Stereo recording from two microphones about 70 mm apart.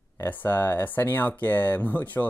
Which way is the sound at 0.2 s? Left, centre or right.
Left.